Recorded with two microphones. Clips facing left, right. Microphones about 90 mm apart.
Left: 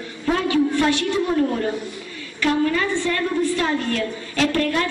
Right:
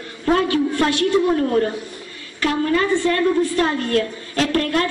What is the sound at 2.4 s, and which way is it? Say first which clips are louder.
A woman's voice: right 1 dB; 40° right (ahead or behind).